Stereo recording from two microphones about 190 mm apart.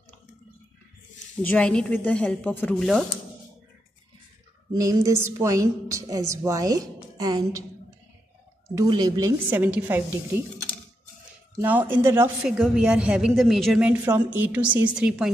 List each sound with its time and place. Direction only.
1.4 s speech: 5° left (ahead or behind)
4.7 s a woman's voice: 15° right (ahead or behind)
8.7 s a woman's voice: 20° right (ahead or behind)
11.6 s a woman's voice: 10° right (ahead or behind)
12.4 s a woman's voice: centre (ahead or behind)